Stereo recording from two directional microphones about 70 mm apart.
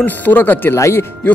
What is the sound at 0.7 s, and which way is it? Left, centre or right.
Speech, left.